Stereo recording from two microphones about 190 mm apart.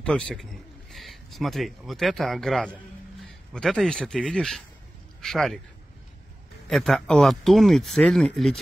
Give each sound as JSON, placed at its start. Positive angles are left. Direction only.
{"t": 0.0, "sound": "speech", "side_deg": 5}
{"t": 6.7, "sound": "speech", "side_deg": 5}